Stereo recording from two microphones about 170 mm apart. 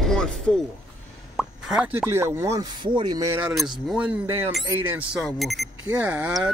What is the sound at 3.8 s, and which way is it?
A man's voice, 5° right (ahead or behind).